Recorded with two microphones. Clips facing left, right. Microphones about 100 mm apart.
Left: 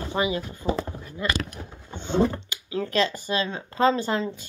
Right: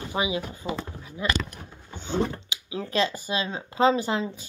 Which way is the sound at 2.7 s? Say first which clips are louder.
Left 2 dB; 20° right (ahead or behind).